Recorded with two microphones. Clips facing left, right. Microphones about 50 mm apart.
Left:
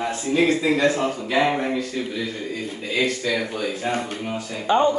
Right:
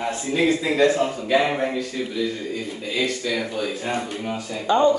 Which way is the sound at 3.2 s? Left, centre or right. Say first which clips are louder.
Left 1 dB; centre.